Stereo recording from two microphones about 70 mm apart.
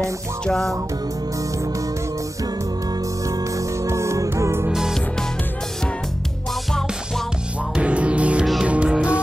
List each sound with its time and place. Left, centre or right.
0.5 s music: centre
3.3 s music: right
7.7 s music: centre